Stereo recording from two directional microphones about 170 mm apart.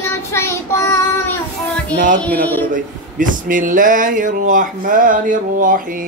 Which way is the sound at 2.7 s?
50° right (ahead or behind).